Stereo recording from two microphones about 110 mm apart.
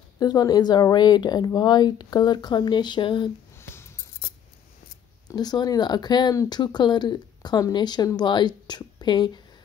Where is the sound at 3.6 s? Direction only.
25° left (ahead or behind).